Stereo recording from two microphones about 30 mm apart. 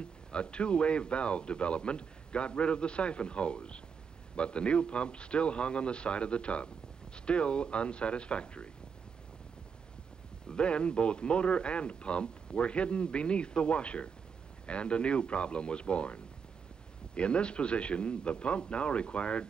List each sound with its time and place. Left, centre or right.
0.3 s speech: left
10.5 s speech: left